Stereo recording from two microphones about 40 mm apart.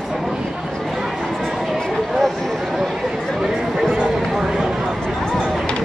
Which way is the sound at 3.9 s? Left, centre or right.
Centre.